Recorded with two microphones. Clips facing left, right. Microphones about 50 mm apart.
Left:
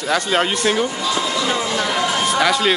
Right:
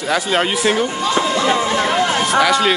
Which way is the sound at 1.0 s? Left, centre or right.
Right.